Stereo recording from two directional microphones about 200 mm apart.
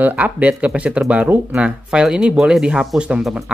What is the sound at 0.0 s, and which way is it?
Speech, 5° right (ahead or behind).